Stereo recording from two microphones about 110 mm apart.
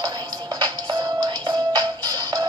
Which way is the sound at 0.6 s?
40° right (ahead or behind).